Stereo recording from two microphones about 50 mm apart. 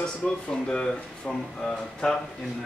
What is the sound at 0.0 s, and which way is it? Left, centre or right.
Speech, centre.